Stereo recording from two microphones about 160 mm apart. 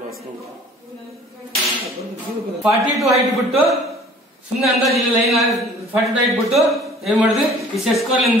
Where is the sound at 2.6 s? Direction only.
Centre (ahead or behind).